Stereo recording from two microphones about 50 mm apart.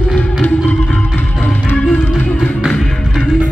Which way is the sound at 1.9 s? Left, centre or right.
Left.